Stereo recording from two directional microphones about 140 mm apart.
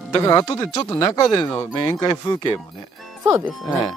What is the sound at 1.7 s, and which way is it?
Speech, 30° left (ahead or behind).